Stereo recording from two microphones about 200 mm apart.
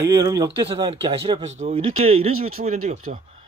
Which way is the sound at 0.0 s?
15° right (ahead or behind).